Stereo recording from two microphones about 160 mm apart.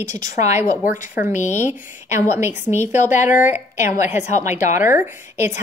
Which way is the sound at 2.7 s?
45° left (ahead or behind).